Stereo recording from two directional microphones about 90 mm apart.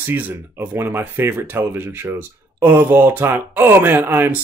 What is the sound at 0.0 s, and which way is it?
Speech, 25° right (ahead or behind).